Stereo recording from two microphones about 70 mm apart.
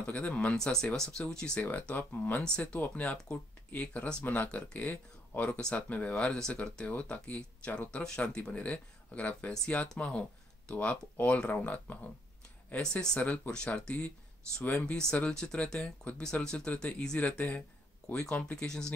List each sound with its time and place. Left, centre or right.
0.0 s speech: left
0.6 s speech: centre
1.7 s speech: left
6.9 s speech: left
12.7 s speech: centre
17.3 s speech: left
17.6 s a sound: centre
18.3 s speech: centre